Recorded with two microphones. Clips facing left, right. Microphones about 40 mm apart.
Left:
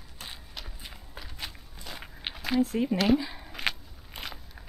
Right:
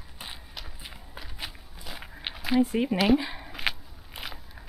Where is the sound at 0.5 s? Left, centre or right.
Centre.